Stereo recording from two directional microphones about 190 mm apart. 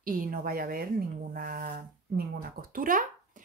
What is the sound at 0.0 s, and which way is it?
A woman's voice, 50° right (ahead or behind).